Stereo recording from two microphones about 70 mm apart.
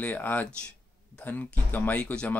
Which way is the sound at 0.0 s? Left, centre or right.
Left.